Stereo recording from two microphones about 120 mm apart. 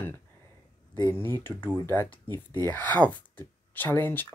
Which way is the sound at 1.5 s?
15° left (ahead or behind).